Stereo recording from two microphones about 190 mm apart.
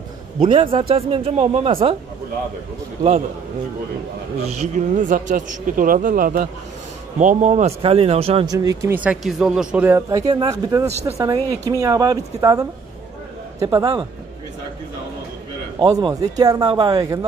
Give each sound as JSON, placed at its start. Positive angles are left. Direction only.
{"t": 0.4, "sound": "speech", "side_deg": -30}
{"t": 4.5, "sound": "speech", "side_deg": -40}
{"t": 8.5, "sound": "speech", "side_deg": -20}
{"t": 10.9, "sound": "speech", "side_deg": -35}
{"t": 11.1, "sound": "speech", "side_deg": -15}
{"t": 15.8, "sound": "speech", "side_deg": -20}